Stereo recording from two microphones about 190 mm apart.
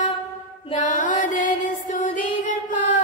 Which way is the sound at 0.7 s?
45° left (ahead or behind).